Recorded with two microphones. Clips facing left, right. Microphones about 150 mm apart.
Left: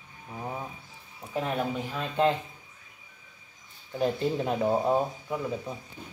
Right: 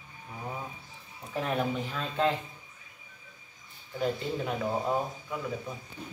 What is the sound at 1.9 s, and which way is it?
Speech, 20° left (ahead or behind).